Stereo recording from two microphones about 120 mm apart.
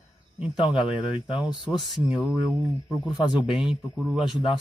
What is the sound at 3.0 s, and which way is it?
Speech, 35° left (ahead or behind).